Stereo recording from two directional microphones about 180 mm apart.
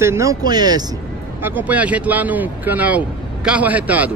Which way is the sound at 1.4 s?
10° right (ahead or behind).